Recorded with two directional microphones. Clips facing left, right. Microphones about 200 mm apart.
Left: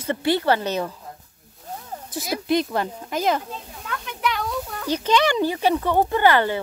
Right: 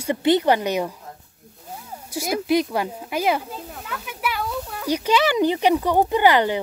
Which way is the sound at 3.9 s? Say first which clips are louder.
Left 2 dB; 5° right (ahead or behind).